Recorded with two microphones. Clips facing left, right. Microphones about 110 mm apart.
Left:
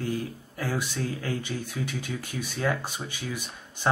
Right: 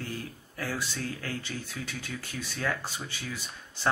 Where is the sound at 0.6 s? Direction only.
15° left (ahead or behind).